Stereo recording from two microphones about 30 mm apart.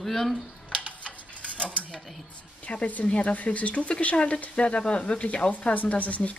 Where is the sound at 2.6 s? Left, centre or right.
Left.